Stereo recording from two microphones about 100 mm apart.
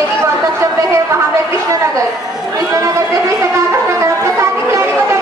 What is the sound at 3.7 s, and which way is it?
Music, 30° right (ahead or behind).